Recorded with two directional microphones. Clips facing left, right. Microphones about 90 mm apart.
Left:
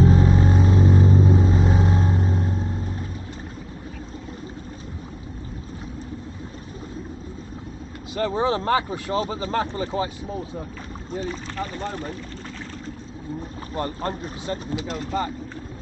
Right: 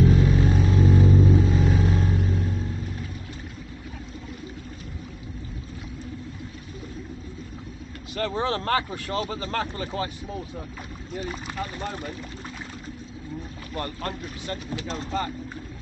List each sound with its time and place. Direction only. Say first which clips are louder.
0.0 s vehicle: left 2 dB; 30° left (ahead or behind)
8.1 s speech: left 4 dB; 15° left (ahead or behind)
11.1 s speech: left 2 dB; 10° right (ahead or behind)
13.7 s speech: left 4 dB; 25° left (ahead or behind)